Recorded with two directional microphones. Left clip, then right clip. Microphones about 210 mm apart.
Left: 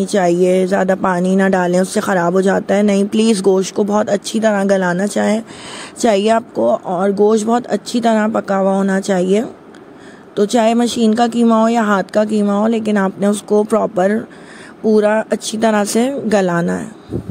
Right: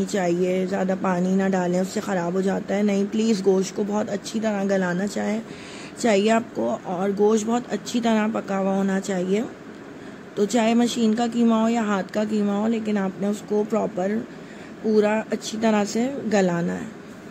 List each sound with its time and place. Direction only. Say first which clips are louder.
0.0 s speech: left 10 dB; 35° left (ahead or behind)